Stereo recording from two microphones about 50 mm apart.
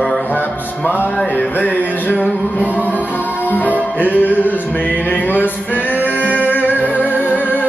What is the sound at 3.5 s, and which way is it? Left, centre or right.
Music, left.